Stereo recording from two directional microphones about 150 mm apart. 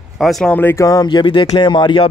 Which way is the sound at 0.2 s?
Centre (ahead or behind).